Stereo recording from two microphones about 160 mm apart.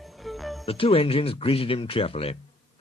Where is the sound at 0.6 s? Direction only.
35° left (ahead or behind).